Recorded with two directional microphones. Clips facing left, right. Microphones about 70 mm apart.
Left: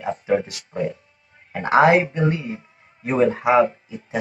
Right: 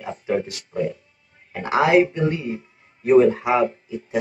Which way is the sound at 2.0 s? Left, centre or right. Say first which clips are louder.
Left 1 dB; left.